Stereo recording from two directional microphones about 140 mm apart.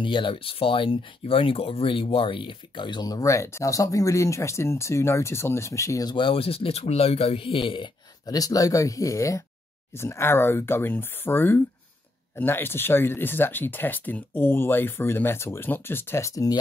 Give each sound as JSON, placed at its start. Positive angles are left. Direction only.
{"t": 0.0, "sound": "speech", "side_deg": 35}